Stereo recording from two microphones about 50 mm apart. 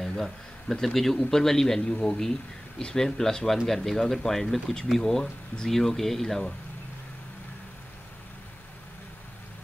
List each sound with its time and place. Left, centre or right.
0.2 s a man's voice: centre